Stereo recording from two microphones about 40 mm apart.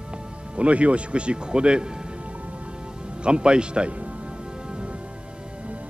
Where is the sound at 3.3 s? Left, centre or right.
Right.